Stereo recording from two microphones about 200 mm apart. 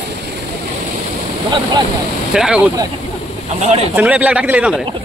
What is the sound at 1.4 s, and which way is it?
Speech, 25° right (ahead or behind).